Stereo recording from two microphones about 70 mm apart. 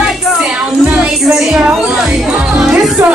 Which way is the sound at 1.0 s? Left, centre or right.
Centre.